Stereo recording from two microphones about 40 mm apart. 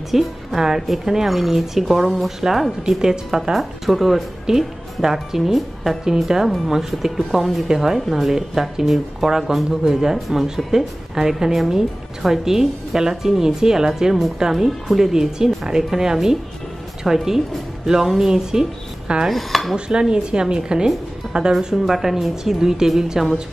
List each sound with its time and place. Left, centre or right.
0.1 s speech: centre
0.6 s speech: centre
19.2 s speech: centre
19.7 s speech: centre
21.8 s speech: centre